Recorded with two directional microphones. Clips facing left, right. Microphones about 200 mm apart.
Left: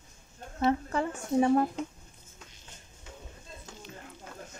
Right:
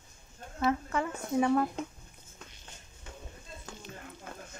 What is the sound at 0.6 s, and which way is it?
Speech, 30° left (ahead or behind).